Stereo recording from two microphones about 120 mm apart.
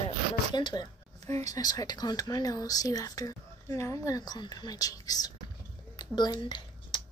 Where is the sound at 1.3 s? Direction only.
30° left (ahead or behind).